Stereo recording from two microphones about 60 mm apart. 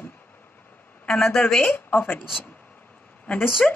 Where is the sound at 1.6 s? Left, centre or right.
Left.